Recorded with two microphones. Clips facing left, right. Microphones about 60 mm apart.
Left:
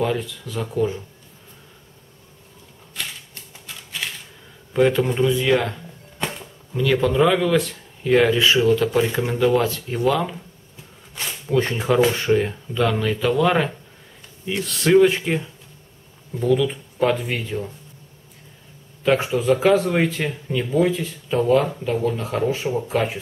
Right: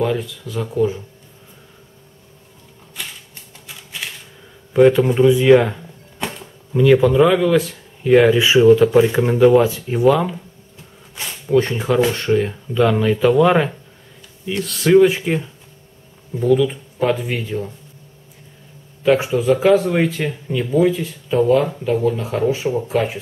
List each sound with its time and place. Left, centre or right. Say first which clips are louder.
0.0 s speech: right 3 dB; centre
3.6 s a sound: even; centre
4.7 s speech: right 6 dB; centre
6.1 s a sound: right 1 dB; centre
6.7 s speech: right 8 dB; centre
7.0 s speech: right 4 dB; centre
14.4 s speech: right 2 dB; centre
19.0 s speech: right 3 dB; centre